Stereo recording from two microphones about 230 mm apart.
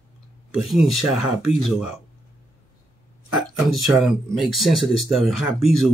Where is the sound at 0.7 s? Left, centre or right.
Centre.